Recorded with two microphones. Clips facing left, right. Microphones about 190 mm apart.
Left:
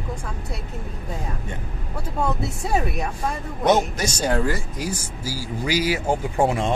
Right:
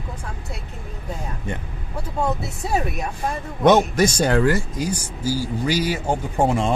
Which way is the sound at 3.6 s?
60° right (ahead or behind).